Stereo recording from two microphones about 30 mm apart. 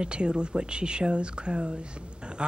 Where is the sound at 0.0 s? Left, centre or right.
Right.